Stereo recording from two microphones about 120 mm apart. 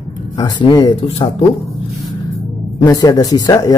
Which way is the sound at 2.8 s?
30° left (ahead or behind).